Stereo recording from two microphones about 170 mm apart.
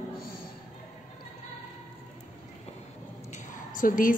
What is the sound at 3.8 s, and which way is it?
Speech, 50° left (ahead or behind).